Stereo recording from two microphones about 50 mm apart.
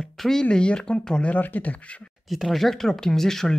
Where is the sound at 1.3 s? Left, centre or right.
Left.